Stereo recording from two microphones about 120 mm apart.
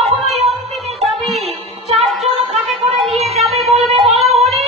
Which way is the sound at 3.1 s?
60° right (ahead or behind).